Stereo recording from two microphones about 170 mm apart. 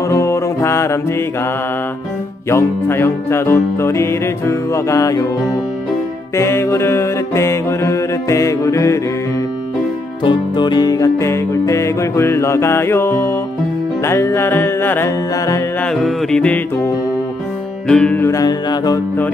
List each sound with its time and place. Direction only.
0.1 s music: 15° left (ahead or behind)
2.5 s music: 15° left (ahead or behind)
6.3 s music: 15° left (ahead or behind)
10.2 s music: 25° left (ahead or behind)
15.8 s music: centre (ahead or behind); by 18.9 s 25° left (ahead or behind)